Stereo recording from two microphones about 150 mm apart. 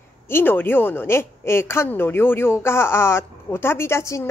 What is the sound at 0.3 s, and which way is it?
A woman's voice, 15° left (ahead or behind).